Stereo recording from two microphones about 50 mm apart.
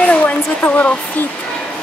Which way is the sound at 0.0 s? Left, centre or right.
Left.